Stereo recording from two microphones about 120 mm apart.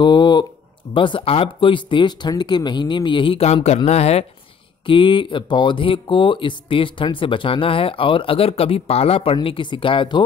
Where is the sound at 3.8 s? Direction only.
60° left (ahead or behind).